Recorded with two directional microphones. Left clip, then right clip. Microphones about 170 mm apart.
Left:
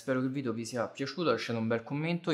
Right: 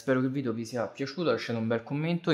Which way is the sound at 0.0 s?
30° right (ahead or behind).